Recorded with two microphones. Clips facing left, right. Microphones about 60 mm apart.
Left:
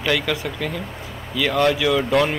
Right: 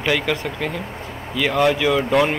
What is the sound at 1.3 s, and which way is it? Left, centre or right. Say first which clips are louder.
Speech: right 1 dB; centre.